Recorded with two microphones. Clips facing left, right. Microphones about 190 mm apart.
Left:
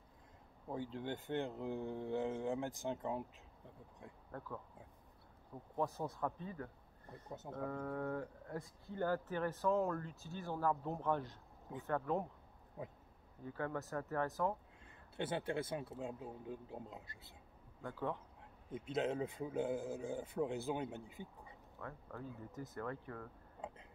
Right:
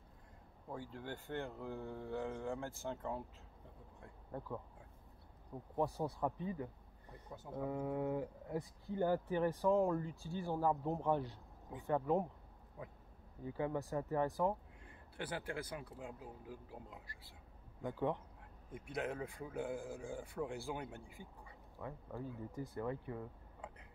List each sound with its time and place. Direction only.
0.7 s speech: 20° left (ahead or behind)
4.3 s speech: 15° right (ahead or behind)
5.8 s speech: 15° right (ahead or behind)
12.8 s speech: 20° left (ahead or behind)
13.4 s speech: 15° right (ahead or behind)
14.9 s speech: 25° left (ahead or behind)
17.8 s speech: 15° right (ahead or behind)
18.7 s speech: 20° left (ahead or behind)
21.7 s speech: 15° right (ahead or behind)
23.6 s tick-tock: 25° left (ahead or behind)